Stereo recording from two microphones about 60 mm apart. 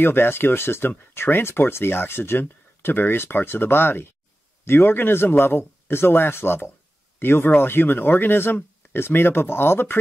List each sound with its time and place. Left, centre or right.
0.0 s speech: left